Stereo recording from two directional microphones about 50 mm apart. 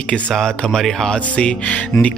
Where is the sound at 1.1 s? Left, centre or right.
Left.